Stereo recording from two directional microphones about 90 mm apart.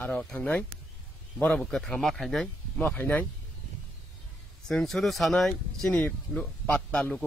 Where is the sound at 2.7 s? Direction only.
15° left (ahead or behind).